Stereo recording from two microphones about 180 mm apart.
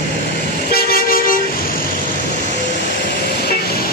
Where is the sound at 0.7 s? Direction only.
55° left (ahead or behind).